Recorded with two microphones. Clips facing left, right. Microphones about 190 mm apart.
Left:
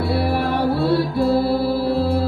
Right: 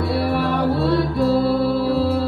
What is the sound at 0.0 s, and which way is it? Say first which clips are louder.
Music: even; centre (ahead or behind).